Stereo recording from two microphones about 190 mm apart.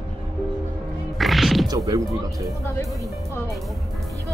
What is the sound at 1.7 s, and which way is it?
Speech, 20° right (ahead or behind).